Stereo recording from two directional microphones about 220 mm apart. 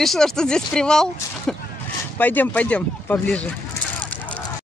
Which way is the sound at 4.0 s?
5° left (ahead or behind).